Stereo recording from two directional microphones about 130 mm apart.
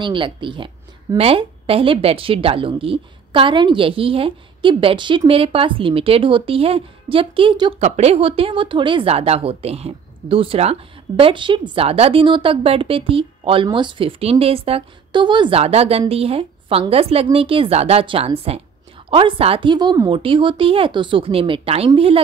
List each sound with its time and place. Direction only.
0.0 s speech: 40° right (ahead or behind)
7.8 s speech: 55° right (ahead or behind); by 15.6 s 35° right (ahead or behind)
15.6 s a woman's voice: 50° right (ahead or behind)